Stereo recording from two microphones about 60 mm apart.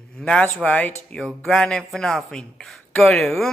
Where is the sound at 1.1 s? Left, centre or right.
Centre.